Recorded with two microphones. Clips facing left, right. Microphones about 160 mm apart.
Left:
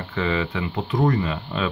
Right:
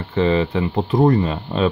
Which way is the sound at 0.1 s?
30° right (ahead or behind).